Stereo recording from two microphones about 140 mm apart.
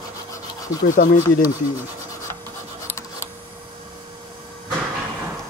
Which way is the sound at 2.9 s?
20° left (ahead or behind).